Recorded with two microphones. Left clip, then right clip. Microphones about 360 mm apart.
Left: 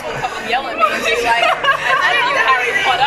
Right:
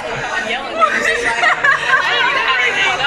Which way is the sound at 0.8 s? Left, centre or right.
Centre.